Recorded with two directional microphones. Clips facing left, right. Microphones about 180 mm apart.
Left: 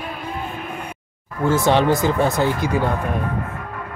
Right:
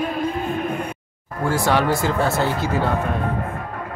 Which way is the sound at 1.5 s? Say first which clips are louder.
Left 3 dB; 20° left (ahead or behind).